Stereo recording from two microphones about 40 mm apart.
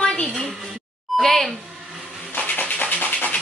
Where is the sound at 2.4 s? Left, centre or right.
Left.